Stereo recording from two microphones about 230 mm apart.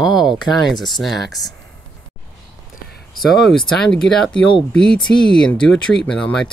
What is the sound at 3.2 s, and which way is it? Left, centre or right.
Speech, centre.